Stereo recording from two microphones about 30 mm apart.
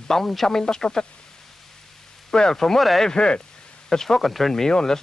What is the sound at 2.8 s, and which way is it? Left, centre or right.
Speech, centre.